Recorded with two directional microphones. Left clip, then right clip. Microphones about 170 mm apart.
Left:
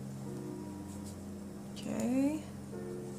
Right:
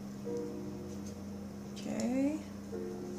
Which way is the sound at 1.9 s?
20° left (ahead or behind).